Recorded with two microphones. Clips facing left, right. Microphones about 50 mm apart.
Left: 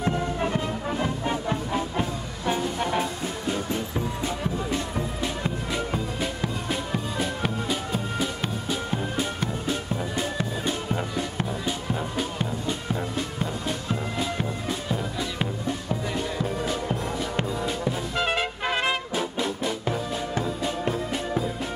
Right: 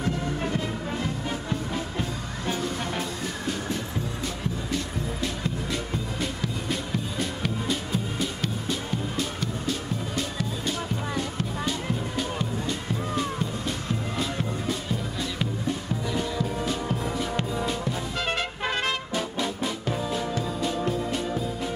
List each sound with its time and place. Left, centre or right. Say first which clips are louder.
0.0 s music: left 2 dB; left
4.2 s music: left 3 dB; left
9.4 s music: left 2 dB; left
16.6 s music: left 1 dB; centre